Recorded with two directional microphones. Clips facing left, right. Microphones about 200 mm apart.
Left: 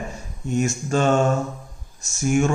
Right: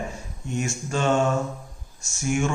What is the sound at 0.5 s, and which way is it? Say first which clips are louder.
Speech: left 6 dB; 40° left (ahead or behind).